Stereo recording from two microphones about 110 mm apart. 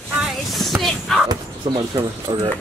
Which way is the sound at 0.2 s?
Centre (ahead or behind).